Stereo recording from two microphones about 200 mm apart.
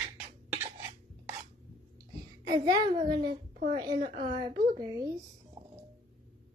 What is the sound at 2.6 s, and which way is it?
A child's voice, 20° right (ahead or behind).